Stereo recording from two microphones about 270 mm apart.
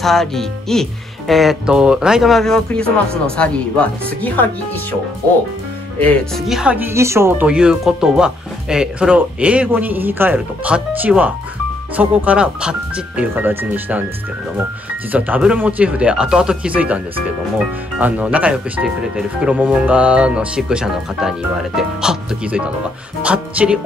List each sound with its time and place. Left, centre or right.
0.0 s speech: centre
5.9 s speech: centre
15.1 s speech: centre